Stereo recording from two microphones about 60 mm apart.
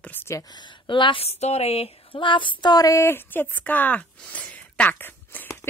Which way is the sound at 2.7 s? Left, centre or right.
Left.